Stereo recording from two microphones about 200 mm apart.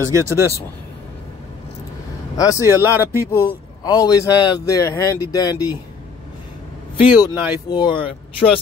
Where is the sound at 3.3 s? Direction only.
15° left (ahead or behind).